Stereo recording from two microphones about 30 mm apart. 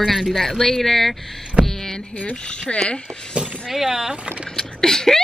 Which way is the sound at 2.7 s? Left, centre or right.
Left.